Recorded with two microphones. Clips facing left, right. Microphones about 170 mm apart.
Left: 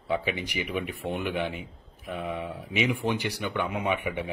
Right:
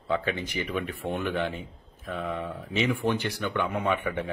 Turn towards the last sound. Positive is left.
turn(degrees=15)  # may be behind; listen again after turning